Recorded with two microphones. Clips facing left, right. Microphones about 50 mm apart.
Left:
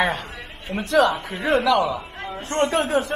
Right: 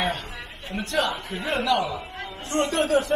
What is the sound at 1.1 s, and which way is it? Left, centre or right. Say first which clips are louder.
A man's voice: left 6 dB; left.